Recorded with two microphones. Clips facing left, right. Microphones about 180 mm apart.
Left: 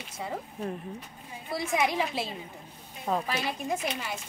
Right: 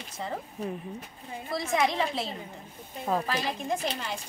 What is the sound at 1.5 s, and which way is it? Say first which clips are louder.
A woman's voice: right 1 dB; 10° left (ahead or behind).